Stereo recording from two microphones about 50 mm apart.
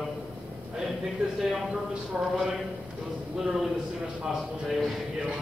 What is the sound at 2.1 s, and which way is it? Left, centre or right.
Speech, right.